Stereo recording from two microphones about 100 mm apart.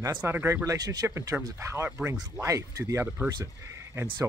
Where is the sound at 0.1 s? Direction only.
20° right (ahead or behind).